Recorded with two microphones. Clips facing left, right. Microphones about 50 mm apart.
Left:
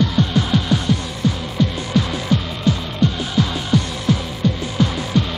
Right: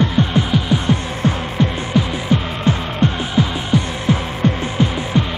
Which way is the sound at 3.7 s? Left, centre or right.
Right.